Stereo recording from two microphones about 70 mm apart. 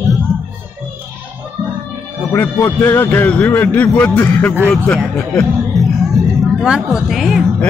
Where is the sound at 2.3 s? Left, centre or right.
Left.